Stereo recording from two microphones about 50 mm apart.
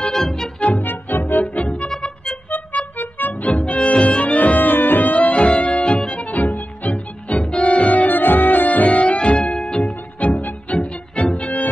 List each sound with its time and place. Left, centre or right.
0.1 s music: centre
0.6 s music: left
0.8 s music: left
1.4 s music: left
1.9 s music: centre
3.0 s music: left; by 6.1 s centre
6.1 s music: left
9.4 s music: centre
10.3 s music: left